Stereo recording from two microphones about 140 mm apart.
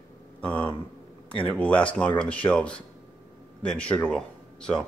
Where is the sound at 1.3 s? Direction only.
10° left (ahead or behind).